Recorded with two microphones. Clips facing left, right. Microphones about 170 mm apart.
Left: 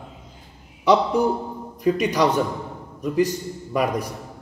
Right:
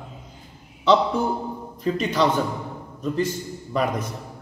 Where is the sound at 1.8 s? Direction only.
15° left (ahead or behind).